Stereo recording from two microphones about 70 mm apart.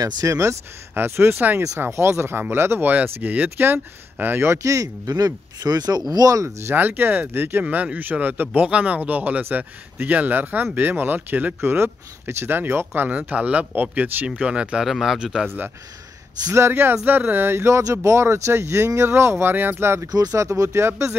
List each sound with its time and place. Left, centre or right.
0.0 s speech: right
0.9 s speech: right
2.9 s speech: right
6.7 s speech: right
11.6 s speech: right
14.2 s speech: centre
14.9 s a man's voice: centre
16.5 s speech: right
19.5 s speech: right
20.1 s speech: right
20.3 s speech: right